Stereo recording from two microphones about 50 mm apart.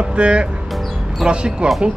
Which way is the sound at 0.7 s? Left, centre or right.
Centre.